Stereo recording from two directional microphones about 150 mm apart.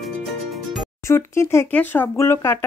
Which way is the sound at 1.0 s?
20° left (ahead or behind).